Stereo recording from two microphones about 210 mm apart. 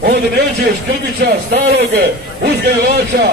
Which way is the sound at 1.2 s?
55° right (ahead or behind).